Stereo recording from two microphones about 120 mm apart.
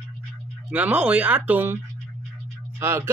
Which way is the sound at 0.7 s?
10° right (ahead or behind).